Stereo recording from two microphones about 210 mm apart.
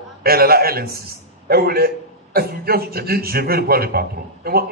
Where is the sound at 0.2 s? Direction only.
45° right (ahead or behind).